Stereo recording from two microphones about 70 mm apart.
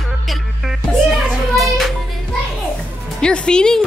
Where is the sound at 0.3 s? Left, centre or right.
Centre.